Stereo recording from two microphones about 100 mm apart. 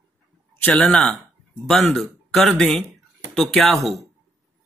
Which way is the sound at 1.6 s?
Centre (ahead or behind).